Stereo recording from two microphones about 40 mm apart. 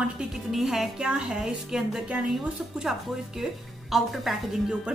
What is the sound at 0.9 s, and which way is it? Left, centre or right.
Speech, right.